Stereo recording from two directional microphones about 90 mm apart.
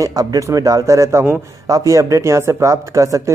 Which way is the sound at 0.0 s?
45° right (ahead or behind).